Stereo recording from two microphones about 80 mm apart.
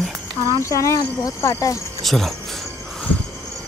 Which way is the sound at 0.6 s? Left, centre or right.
Left.